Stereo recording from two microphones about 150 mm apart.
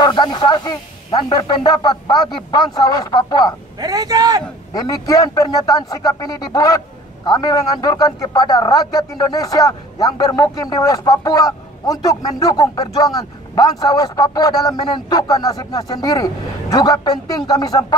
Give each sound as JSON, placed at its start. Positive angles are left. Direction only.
{"t": 0.0, "sound": "a man's voice", "side_deg": 30}
{"t": 3.8, "sound": "a man's voice", "side_deg": -25}
{"t": 4.7, "sound": "a man's voice", "side_deg": 25}